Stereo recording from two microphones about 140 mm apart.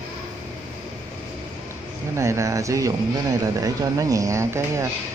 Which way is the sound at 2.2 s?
20° right (ahead or behind).